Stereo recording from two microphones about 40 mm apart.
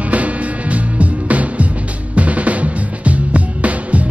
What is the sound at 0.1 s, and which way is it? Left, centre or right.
Music, right.